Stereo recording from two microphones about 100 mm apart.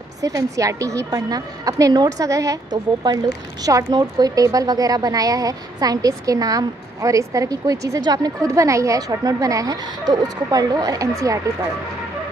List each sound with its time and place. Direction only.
0.2 s a woman's voice: 35° right (ahead or behind)
2.7 s a woman's voice: 45° right (ahead or behind)